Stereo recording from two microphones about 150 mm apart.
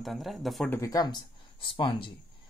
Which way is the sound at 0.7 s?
20° left (ahead or behind).